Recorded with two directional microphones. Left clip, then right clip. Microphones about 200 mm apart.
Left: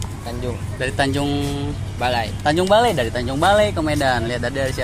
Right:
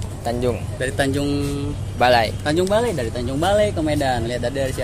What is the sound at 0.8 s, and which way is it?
Speech, 5° left (ahead or behind).